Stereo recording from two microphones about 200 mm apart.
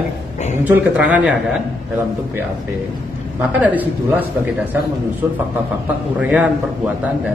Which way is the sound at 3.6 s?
10° right (ahead or behind).